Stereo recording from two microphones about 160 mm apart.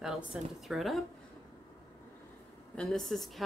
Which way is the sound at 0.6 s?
Centre (ahead or behind).